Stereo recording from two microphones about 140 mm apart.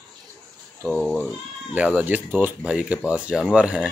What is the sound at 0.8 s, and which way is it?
Speech, 5° left (ahead or behind).